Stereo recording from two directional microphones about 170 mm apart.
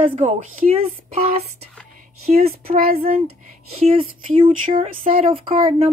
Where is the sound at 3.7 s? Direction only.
35° right (ahead or behind).